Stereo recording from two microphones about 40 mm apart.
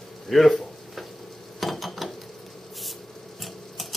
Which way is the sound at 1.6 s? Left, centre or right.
Centre.